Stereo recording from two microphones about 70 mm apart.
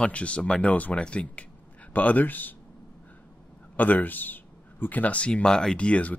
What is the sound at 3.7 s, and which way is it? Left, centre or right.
Speech, left.